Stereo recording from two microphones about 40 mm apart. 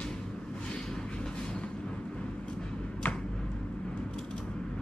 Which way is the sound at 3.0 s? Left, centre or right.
Left.